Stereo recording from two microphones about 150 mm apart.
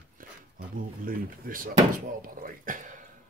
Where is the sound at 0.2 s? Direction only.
70° right (ahead or behind).